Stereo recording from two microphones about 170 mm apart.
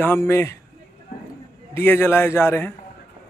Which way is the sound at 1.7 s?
15° left (ahead or behind).